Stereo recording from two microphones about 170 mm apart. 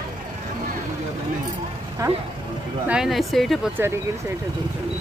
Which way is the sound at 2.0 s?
20° right (ahead or behind).